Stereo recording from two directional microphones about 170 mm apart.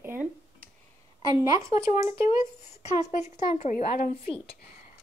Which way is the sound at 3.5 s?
50° left (ahead or behind).